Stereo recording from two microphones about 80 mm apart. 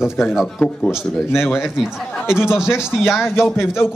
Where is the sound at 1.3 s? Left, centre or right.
Left.